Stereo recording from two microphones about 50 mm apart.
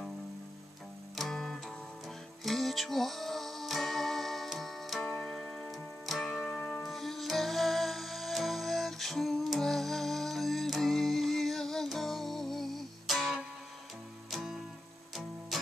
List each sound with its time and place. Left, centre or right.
1.1 s music: centre